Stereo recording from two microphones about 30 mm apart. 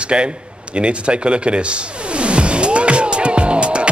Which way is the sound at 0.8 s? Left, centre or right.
Right.